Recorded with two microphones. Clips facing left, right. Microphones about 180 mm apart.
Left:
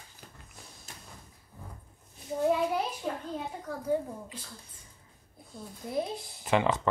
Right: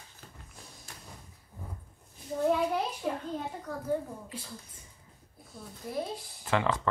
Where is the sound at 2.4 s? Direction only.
5° left (ahead or behind).